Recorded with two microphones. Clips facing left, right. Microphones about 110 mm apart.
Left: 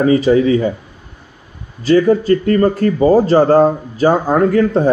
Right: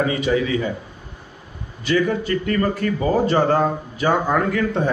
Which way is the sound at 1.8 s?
35° left (ahead or behind).